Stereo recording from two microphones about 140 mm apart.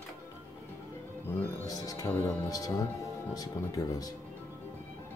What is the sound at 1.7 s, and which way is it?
Music, 25° left (ahead or behind).